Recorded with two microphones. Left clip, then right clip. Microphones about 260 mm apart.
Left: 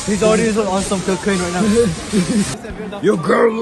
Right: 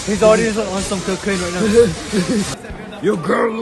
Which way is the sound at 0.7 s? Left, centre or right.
Centre.